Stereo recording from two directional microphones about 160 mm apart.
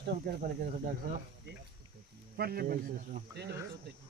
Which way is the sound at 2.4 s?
75° right (ahead or behind).